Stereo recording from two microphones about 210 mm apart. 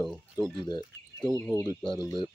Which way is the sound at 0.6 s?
20° left (ahead or behind).